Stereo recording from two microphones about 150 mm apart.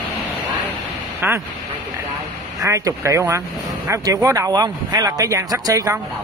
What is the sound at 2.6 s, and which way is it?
Speech, 20° right (ahead or behind).